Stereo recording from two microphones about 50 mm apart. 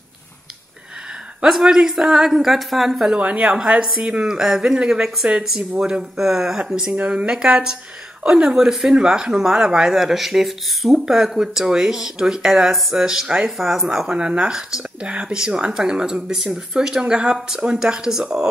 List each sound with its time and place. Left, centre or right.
1.4 s speech: centre
3.2 s speech: right; by 13.8 s centre
14.1 s speech: right